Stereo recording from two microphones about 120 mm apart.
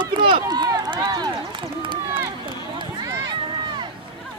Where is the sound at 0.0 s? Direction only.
40° right (ahead or behind).